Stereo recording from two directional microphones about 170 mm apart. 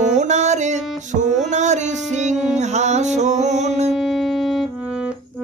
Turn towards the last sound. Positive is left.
turn(degrees=-5)  # may be behind; listen again after turning